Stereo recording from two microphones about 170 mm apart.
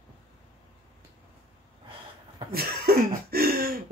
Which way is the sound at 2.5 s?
65° right (ahead or behind).